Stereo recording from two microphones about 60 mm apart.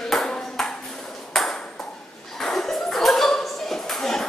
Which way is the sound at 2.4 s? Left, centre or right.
Centre.